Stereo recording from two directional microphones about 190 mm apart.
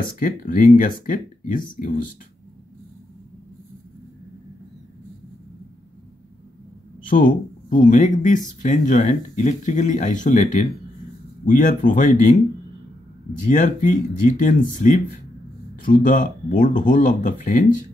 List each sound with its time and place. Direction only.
0.2 s speech: 45° left (ahead or behind)
7.1 s speech: 45° left (ahead or behind)
13.4 s speech: 40° left (ahead or behind)